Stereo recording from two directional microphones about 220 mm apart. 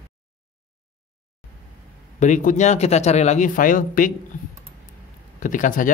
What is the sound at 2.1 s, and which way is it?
Speech, 35° left (ahead or behind).